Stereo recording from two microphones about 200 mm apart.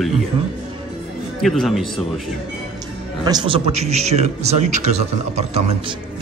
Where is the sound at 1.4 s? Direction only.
Centre (ahead or behind).